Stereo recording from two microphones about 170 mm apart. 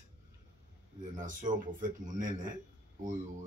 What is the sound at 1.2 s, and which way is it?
Speech, 50° right (ahead or behind).